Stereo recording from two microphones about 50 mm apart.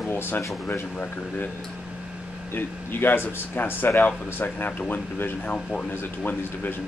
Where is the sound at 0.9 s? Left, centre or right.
Left.